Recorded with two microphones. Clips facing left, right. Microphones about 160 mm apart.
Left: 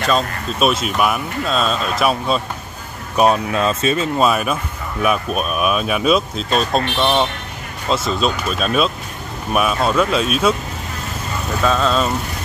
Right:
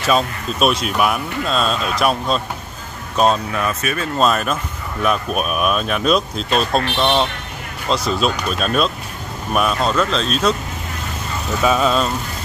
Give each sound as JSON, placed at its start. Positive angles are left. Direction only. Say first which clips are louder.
{"t": 0.0, "sound": "speech", "louder": "right 1 dB", "side_deg": 0}
{"t": 3.6, "sound": "speech", "louder": "left 4 dB", "side_deg": 20}
{"t": 4.2, "sound": "speech", "louder": "right 3 dB", "side_deg": 10}
{"t": 11.6, "sound": "speech", "louder": "right 1 dB", "side_deg": -10}